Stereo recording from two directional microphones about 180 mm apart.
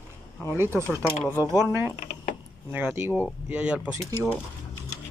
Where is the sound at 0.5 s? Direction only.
15° right (ahead or behind).